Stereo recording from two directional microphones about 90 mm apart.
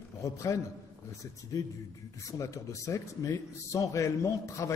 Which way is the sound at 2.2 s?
35° left (ahead or behind).